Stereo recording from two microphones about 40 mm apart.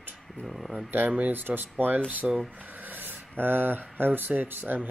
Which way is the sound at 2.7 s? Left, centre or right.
Right.